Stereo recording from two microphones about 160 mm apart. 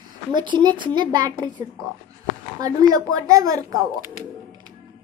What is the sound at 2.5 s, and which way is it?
A woman's voice, 25° right (ahead or behind).